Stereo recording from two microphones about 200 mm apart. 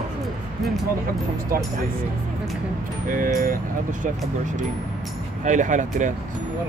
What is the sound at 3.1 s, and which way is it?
Speech, 45° right (ahead or behind).